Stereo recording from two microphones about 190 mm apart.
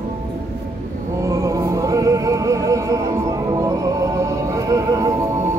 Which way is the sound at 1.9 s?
15° right (ahead or behind).